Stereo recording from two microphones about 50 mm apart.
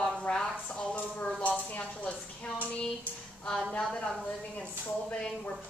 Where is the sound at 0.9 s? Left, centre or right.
Left.